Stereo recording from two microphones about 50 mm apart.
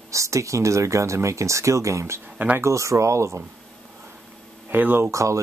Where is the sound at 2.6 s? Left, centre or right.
Right.